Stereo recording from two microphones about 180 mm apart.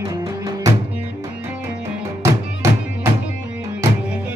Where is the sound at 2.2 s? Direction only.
15° right (ahead or behind).